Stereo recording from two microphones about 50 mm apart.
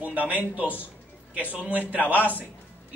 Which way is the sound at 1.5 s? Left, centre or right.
Right.